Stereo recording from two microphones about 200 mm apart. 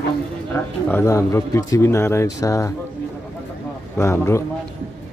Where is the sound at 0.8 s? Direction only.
10° left (ahead or behind).